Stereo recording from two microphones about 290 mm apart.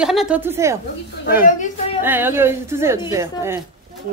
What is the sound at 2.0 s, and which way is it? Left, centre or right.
A woman's voice, centre.